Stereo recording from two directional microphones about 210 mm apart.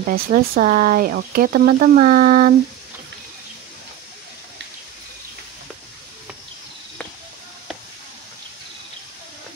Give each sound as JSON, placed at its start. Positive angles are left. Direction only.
{"t": 0.0, "sound": "speech", "side_deg": -45}